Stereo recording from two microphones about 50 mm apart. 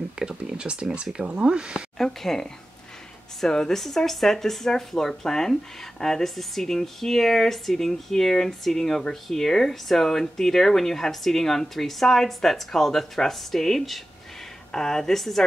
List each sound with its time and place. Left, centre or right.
0.2 s a sound: centre
1.1 s speech: centre
2.0 s speech: centre